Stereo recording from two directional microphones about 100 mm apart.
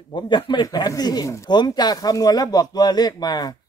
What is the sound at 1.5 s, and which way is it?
Speech, 45° left (ahead or behind).